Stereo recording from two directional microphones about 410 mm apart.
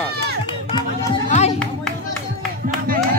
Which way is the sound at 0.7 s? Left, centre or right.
Centre.